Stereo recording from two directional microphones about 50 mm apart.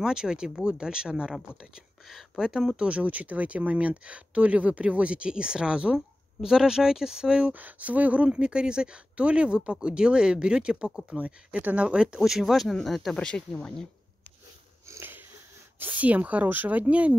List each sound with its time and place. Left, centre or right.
0.0 s speech: centre
2.8 s speech: right
7.4 s speech: right
8.3 s speech: centre
11.1 s speech: right
12.2 s speech: centre
13.1 s speech: left
14.9 s wheeze: right
15.8 s speech: right